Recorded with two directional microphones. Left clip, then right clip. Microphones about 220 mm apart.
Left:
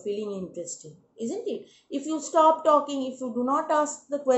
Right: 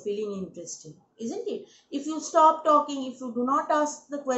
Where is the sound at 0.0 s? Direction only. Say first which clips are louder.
Even; 15° left (ahead or behind).